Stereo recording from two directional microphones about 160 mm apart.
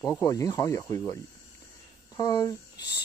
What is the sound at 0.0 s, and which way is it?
Speech, 20° left (ahead or behind).